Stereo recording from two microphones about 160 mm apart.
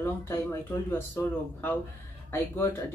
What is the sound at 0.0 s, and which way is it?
Speech, 15° left (ahead or behind).